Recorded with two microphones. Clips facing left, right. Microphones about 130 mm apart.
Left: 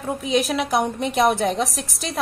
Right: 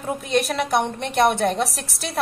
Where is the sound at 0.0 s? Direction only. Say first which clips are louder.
Left 1 dB; centre (ahead or behind).